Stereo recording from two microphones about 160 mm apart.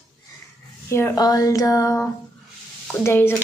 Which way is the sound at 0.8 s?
15° left (ahead or behind).